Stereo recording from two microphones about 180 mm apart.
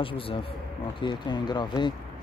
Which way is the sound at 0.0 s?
30° left (ahead or behind).